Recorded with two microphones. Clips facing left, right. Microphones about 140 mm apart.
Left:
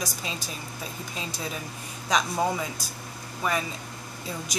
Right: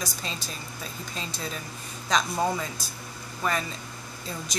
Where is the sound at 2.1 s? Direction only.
10° left (ahead or behind).